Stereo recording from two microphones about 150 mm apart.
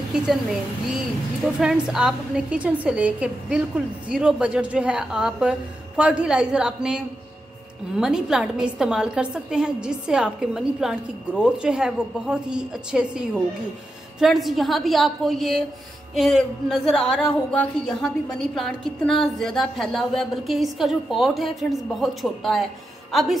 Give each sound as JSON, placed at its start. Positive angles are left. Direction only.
{"t": 0.1, "sound": "a woman's voice", "side_deg": 0}
{"t": 1.6, "sound": "a woman's voice", "side_deg": -5}
{"t": 8.0, "sound": "a woman's voice", "side_deg": -5}